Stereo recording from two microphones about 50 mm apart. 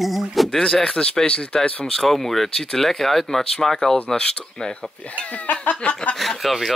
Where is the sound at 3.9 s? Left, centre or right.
Left.